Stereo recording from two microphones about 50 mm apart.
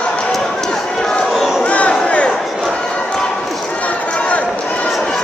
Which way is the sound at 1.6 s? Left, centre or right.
Left.